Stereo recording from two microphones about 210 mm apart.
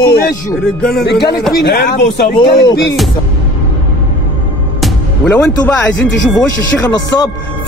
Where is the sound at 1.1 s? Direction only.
50° left (ahead or behind).